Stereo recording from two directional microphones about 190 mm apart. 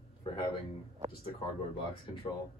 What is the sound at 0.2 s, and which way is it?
Speech, 25° left (ahead or behind).